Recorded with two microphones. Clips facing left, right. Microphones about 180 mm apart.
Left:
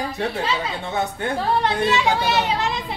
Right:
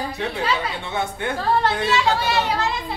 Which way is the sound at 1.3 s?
15° left (ahead or behind).